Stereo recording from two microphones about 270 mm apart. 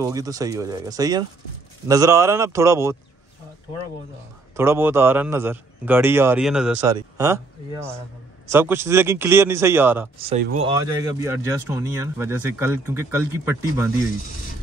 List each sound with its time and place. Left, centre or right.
0.0 s a man's voice: centre
4.6 s a man's voice: centre
10.1 s speech: right
10.6 s a man's voice: centre